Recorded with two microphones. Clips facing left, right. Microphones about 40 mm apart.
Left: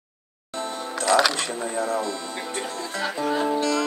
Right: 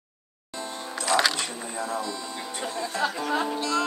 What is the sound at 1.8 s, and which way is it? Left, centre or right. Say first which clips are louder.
Speech: left 4 dB; left.